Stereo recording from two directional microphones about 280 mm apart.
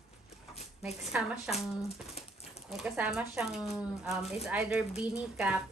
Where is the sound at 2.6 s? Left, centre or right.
Centre.